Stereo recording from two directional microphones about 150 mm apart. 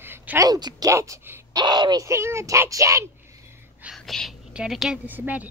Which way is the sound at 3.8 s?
Centre (ahead or behind).